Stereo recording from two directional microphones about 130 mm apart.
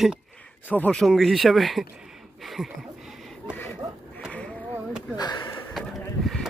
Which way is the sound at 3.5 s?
20° left (ahead or behind).